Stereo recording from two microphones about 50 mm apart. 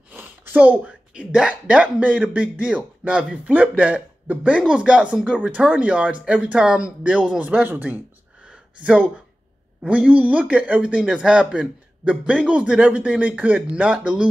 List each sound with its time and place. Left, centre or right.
0.1 s a sound: right
1.1 s speech: centre
1.5 s speech: right
7.3 s speech: right
8.5 s a sound: right
9.8 s speech: right